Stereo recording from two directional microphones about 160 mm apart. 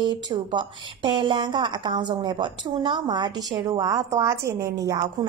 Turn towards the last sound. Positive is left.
turn(degrees=-25)  # may be behind; listen again after turning